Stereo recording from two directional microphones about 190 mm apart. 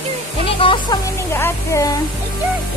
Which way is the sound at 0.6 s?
25° left (ahead or behind).